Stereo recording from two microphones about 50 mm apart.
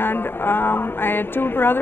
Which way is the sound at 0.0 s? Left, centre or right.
Left.